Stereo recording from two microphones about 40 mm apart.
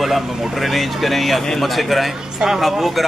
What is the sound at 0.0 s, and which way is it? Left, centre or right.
Speech, centre.